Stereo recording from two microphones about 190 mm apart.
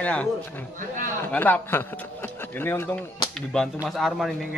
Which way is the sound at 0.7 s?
45° right (ahead or behind).